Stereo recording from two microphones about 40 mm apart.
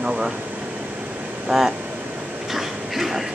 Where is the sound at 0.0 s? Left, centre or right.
Right.